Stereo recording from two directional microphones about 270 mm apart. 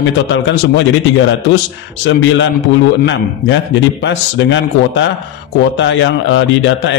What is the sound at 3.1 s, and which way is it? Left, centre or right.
A man's voice, left.